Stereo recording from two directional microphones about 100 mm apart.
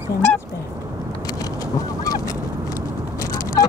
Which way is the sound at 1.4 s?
35° left (ahead or behind).